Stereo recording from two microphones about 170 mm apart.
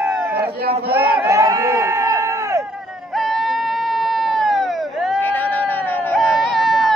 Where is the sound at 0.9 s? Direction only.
15° right (ahead or behind).